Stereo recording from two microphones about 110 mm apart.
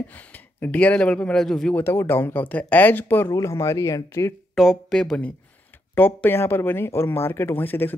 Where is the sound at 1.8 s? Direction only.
20° left (ahead or behind).